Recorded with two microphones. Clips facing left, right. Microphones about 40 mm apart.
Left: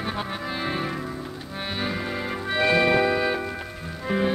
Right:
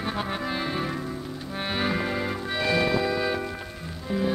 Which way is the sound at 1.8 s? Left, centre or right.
Centre.